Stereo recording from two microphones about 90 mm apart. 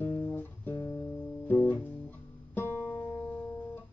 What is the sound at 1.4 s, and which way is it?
Guitar, 20° left (ahead or behind).